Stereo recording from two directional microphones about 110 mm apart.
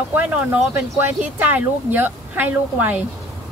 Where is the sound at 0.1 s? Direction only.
15° right (ahead or behind).